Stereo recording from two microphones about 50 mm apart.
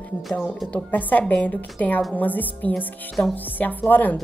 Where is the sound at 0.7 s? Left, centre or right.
Left.